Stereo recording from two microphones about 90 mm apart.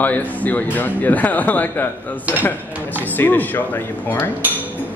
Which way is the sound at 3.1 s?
20° left (ahead or behind).